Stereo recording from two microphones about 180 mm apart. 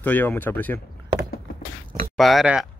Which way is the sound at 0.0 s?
10° left (ahead or behind).